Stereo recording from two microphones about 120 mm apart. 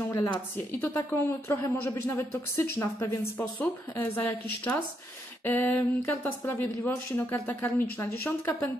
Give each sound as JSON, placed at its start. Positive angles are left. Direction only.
{"t": 0.1, "sound": "a woman's voice", "side_deg": 25}
{"t": 5.4, "sound": "speech", "side_deg": 15}